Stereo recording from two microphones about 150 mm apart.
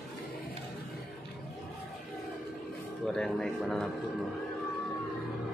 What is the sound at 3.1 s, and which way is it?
Speech, 5° left (ahead or behind).